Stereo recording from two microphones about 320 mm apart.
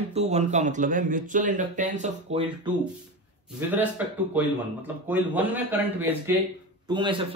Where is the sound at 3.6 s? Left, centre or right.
Centre.